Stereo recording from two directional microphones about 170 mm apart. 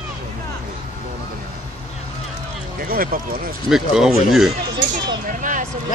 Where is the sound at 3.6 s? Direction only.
5° right (ahead or behind).